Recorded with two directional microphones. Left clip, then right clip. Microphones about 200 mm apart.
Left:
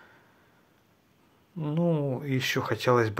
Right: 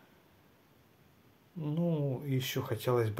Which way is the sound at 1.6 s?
10° left (ahead or behind).